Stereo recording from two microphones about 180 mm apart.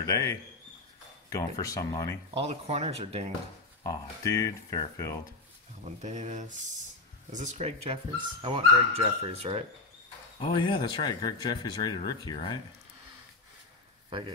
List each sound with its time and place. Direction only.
0.0 s speech: 20° left (ahead or behind)
2.3 s speech: 35° right (ahead or behind)
3.8 s speech: 20° left (ahead or behind)
6.0 s a sound: 45° right (ahead or behind)
7.3 s speech: 40° right (ahead or behind)
10.4 s speech: 30° left (ahead or behind)